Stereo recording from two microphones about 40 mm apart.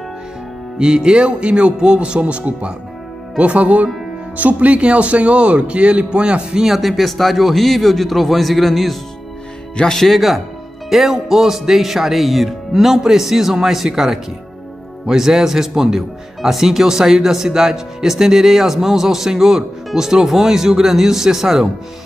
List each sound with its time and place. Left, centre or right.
0.7 s speech: right
6.6 s a man's voice: centre
9.9 s a man's voice: centre